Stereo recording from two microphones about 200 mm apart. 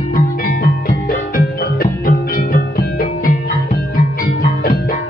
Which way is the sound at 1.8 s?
45° left (ahead or behind).